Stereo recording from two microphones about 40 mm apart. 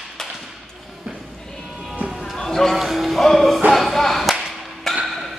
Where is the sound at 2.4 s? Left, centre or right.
Centre.